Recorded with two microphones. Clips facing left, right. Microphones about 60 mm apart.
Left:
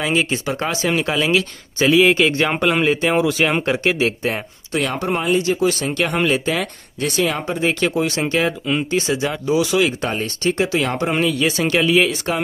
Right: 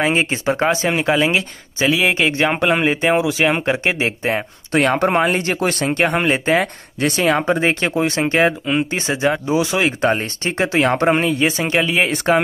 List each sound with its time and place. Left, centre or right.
0.0 s speech: right
1.9 s speech: centre
2.1 s speech: right
2.4 s speech: centre
2.7 s speech: right
3.2 s speech: centre
3.7 s speech: right
4.7 s speech: right
12.3 s speech: right